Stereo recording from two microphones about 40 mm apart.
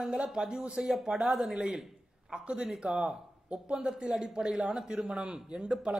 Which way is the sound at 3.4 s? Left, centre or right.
Right.